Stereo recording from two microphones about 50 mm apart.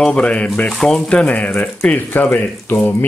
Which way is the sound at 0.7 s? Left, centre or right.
Centre.